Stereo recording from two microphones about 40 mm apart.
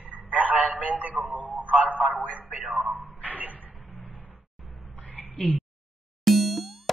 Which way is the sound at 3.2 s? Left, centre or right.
Right.